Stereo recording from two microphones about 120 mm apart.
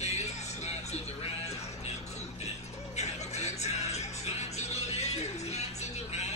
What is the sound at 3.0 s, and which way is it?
Music, 70° left (ahead or behind).